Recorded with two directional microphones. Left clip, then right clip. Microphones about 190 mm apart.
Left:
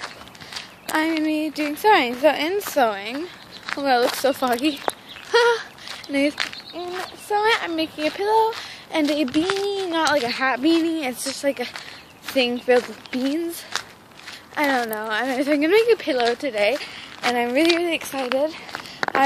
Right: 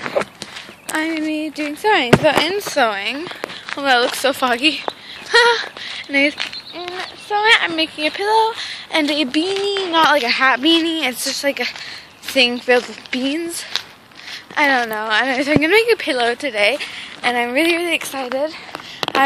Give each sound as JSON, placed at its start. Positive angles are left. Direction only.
{"t": 0.8, "sound": "speech", "side_deg": 5}
{"t": 7.2, "sound": "speech", "side_deg": 15}
{"t": 7.5, "sound": "speech", "side_deg": 0}
{"t": 13.7, "sound": "a sound", "side_deg": 10}
{"t": 14.5, "sound": "speech", "side_deg": 0}